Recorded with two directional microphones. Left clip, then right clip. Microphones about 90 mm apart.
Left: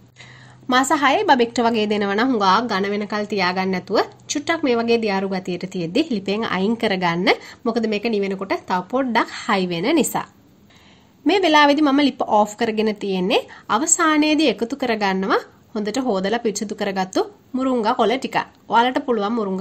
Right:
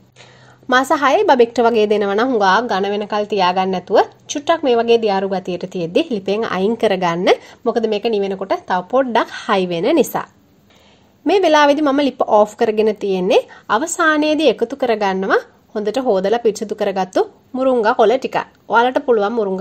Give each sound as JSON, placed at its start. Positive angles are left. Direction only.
{"t": 0.7, "sound": "a woman's voice", "side_deg": -35}
{"t": 11.2, "sound": "a woman's voice", "side_deg": -30}